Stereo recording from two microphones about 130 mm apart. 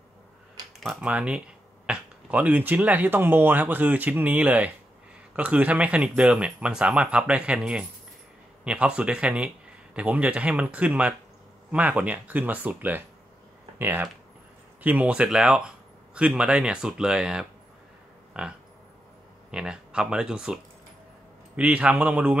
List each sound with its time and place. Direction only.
1.0 s speech: 10° right (ahead or behind)
21.5 s speech: 10° right (ahead or behind)